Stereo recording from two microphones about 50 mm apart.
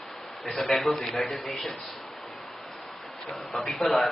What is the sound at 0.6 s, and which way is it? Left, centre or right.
A man's voice, centre.